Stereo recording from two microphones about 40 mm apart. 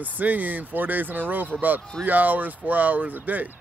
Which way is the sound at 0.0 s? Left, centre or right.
Right.